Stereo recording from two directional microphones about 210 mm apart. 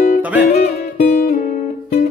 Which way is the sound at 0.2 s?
5° right (ahead or behind).